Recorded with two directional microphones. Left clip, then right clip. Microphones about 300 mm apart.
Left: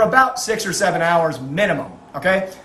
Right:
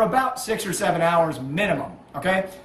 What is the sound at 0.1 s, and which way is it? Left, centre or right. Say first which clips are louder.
A man's voice: left 7 dB; centre.